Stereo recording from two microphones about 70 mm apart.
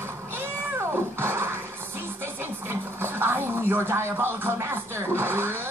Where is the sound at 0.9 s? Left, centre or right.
Right.